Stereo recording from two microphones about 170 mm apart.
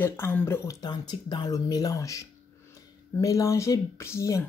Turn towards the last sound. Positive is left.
turn(degrees=15)  # may be behind; listen again after turning